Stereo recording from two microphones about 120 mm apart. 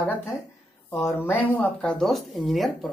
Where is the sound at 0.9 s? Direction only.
25° left (ahead or behind).